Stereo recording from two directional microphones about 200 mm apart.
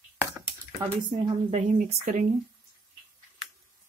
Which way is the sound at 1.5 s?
35° right (ahead or behind).